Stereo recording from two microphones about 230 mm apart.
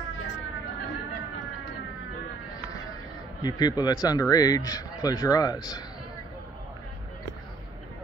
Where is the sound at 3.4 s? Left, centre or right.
Centre.